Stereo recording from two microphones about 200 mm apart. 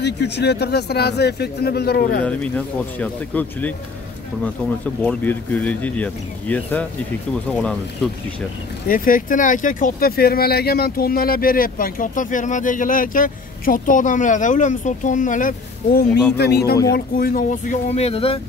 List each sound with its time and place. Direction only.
0.0 s speech: 55° left (ahead or behind)
2.2 s speech: 5° left (ahead or behind)
5.0 s speech: 10° left (ahead or behind)
8.8 s speech: 45° left (ahead or behind)
16.1 s speech: 5° left (ahead or behind)
16.3 s speech: 55° left (ahead or behind); by 18.4 s 30° left (ahead or behind)